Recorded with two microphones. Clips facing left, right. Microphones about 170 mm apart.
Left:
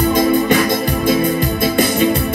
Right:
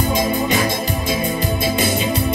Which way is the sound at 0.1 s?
50° left (ahead or behind).